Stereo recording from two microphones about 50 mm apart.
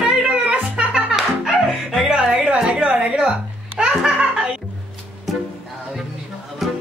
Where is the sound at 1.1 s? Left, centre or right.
Centre.